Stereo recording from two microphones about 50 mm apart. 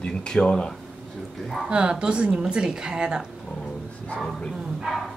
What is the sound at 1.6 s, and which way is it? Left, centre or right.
Speech, centre.